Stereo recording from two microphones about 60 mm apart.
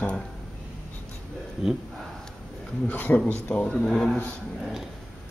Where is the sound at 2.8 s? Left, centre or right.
Left.